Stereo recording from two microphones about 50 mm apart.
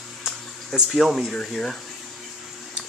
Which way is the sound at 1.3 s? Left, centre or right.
Centre.